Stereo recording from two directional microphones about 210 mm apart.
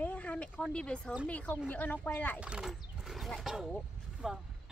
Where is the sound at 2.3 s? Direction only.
5° right (ahead or behind).